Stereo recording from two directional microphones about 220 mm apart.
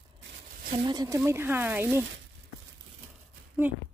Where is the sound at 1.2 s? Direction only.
10° right (ahead or behind).